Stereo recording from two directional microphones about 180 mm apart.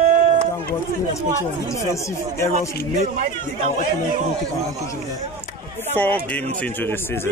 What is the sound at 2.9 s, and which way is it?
Speech, 40° right (ahead or behind).